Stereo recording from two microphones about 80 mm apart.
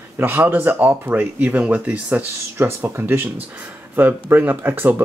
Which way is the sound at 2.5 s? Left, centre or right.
Right.